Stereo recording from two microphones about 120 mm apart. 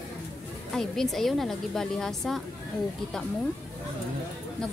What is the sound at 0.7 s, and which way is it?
A woman's voice, 5° left (ahead or behind).